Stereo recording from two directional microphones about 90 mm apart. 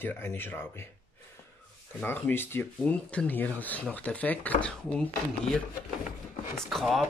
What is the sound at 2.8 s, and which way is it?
Speech, 15° left (ahead or behind).